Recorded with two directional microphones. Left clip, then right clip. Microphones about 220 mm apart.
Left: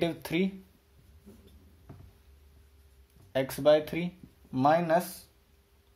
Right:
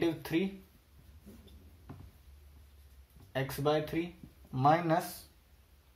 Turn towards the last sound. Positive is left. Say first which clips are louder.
# left 3 dB
turn(degrees=50)  # may be behind; listen again after turning